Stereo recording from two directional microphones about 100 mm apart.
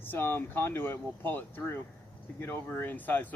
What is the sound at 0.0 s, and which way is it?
Speech, 20° left (ahead or behind).